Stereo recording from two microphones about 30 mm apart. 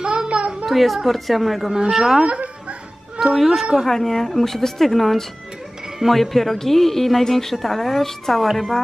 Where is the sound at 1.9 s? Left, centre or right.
Centre.